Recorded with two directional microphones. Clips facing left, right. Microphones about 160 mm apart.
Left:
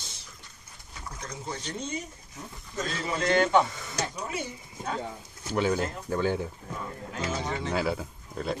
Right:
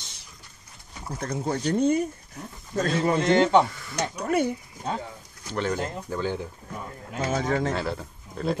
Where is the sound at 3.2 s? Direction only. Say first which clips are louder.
Right 2 dB; 20° right (ahead or behind).